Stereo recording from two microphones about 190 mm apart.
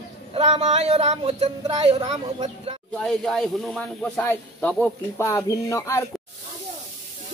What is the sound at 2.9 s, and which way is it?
Speech, 5° left (ahead or behind).